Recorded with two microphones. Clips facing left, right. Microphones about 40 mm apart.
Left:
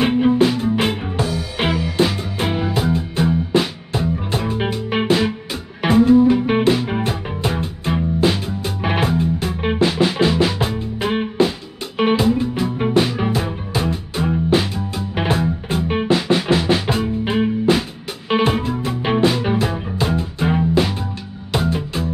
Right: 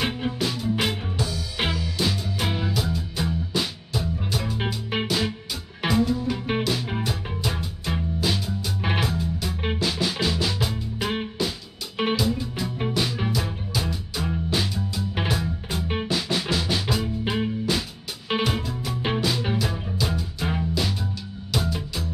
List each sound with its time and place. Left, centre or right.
0.0 s music: left
0.3 s music: left
12.6 s music: left